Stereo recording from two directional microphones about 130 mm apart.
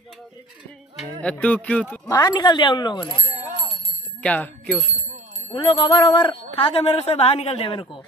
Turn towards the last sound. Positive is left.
turn(degrees=40)  # may be behind; listen again after turning